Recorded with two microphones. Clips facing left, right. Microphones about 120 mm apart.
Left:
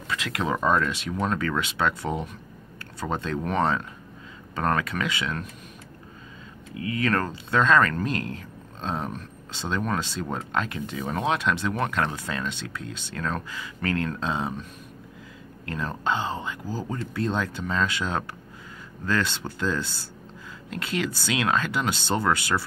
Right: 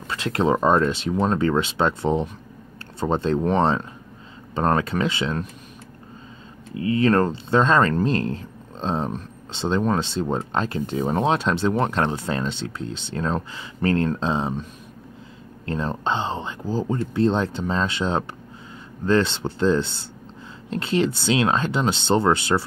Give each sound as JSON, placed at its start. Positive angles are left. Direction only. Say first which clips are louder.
{"t": 0.1, "sound": "speech", "louder": "right 6 dB", "side_deg": -30}
{"t": 6.7, "sound": "speech", "louder": "right 7 dB", "side_deg": -30}
{"t": 15.6, "sound": "speech", "louder": "right 4 dB", "side_deg": -30}